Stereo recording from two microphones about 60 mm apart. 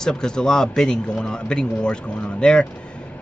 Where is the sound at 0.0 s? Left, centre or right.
Centre.